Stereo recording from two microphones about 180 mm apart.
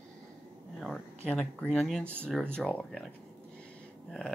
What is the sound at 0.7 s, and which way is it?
Speech, centre (ahead or behind).